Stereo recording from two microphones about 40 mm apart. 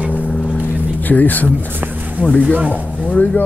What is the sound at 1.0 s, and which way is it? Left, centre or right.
Speech, left.